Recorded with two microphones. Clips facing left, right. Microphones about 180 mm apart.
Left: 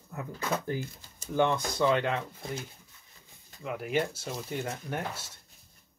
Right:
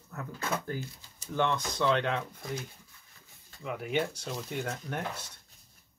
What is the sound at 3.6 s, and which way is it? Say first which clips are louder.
Speech: left 1 dB; centre (ahead or behind).